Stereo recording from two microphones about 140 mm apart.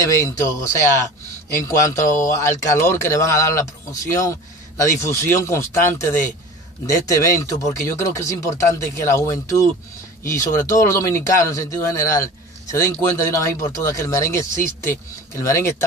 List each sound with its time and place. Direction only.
0.0 s speech: 20° left (ahead or behind)
2.2 s speech: 20° left (ahead or behind)